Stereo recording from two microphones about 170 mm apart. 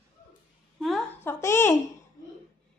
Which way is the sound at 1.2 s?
15° left (ahead or behind).